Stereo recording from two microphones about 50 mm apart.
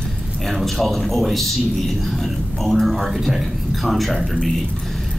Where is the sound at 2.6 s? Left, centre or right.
Centre.